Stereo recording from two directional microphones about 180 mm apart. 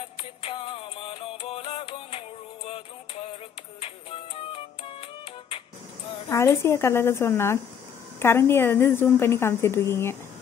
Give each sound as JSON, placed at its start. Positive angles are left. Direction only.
{"t": 0.4, "sound": "music", "side_deg": 30}
{"t": 6.2, "sound": "a woman's voice", "side_deg": 15}